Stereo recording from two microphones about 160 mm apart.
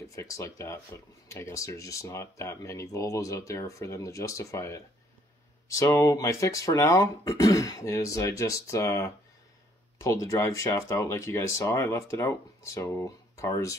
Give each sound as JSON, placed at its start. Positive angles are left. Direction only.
{"t": 0.1, "sound": "speech", "side_deg": 20}